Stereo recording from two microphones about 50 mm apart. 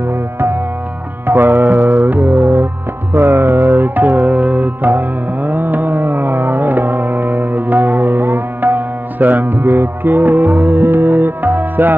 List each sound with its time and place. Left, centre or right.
1.2 s music: right